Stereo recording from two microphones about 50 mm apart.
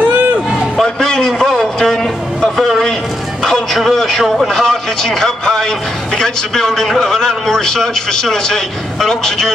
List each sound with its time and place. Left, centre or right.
0.0 s run: right
0.8 s a sound: centre
3.4 s music: centre
4.4 s a man's voice: centre